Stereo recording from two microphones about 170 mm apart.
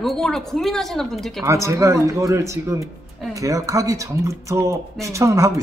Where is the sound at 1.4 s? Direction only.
15° right (ahead or behind).